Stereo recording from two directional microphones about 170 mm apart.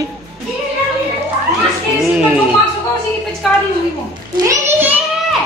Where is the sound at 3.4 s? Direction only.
Centre (ahead or behind).